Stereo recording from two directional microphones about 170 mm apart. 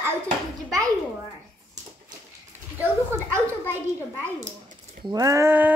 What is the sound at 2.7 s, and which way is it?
A child's voice, 15° right (ahead or behind).